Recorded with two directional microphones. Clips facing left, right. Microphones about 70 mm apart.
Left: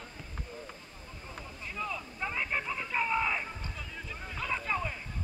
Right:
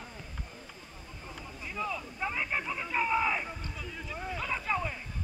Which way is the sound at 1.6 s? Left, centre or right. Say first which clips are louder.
Right 2 dB; centre.